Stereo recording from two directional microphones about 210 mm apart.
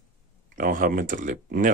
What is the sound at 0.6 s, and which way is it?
Speech, 40° right (ahead or behind).